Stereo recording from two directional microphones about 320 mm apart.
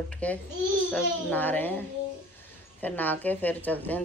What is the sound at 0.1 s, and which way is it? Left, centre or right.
Speech, centre.